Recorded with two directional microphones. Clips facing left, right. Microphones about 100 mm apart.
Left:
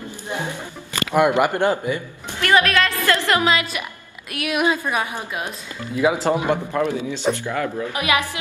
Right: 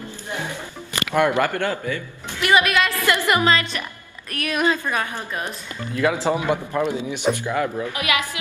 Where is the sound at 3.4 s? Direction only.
10° left (ahead or behind).